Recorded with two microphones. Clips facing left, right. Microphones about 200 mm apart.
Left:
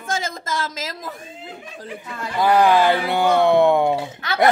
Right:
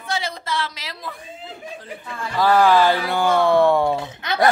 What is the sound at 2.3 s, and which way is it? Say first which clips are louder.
Speech: even; 20° left (ahead or behind).